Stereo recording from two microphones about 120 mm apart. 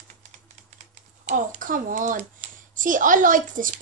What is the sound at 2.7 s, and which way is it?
A woman's voice, 90° right.